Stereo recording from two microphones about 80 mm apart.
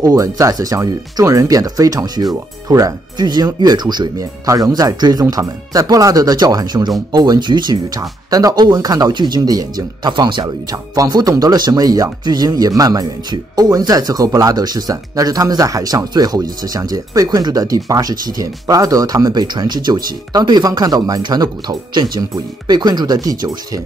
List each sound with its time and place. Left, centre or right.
0.0 s speech: right
3.3 s speech: right
4.2 s speech: right
10.0 s speech: right
10.4 s speech: right